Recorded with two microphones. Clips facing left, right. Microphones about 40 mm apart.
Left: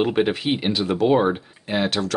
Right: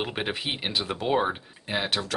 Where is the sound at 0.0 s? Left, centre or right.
Centre.